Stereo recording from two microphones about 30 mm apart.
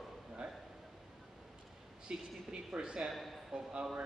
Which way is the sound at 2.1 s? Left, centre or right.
Right.